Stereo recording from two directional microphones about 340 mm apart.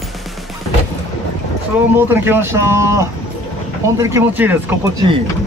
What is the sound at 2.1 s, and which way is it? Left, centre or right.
Speech, centre.